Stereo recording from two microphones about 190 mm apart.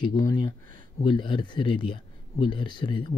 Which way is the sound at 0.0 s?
25° left (ahead or behind).